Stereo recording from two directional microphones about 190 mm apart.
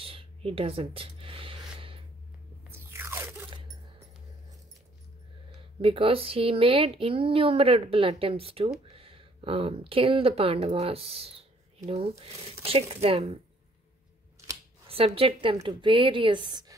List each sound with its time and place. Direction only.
0.0 s a sound: 30° right (ahead or behind)
2.9 s crunch: 15° right (ahead or behind)
5.8 s a woman's voice: 30° right (ahead or behind)
14.9 s a woman's voice: 30° right (ahead or behind)